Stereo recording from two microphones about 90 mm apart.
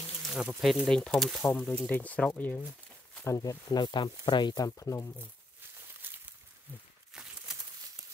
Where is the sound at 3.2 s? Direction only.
35° left (ahead or behind).